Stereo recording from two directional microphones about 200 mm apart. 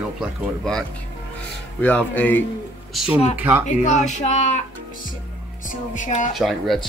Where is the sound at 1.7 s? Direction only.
10° left (ahead or behind).